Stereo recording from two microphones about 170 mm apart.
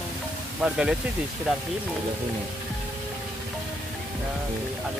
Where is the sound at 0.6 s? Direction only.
5° right (ahead or behind).